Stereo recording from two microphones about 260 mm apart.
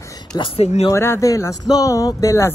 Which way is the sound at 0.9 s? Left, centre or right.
Centre.